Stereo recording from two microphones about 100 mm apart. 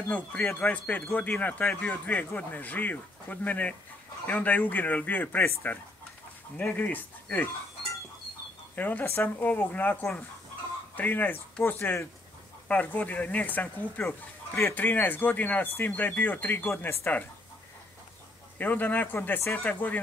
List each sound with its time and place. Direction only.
0.1 s speech: 15° left (ahead or behind)
8.7 s speech: 15° left (ahead or behind)
11.0 s speech: 15° left (ahead or behind)
18.6 s speech: 15° left (ahead or behind)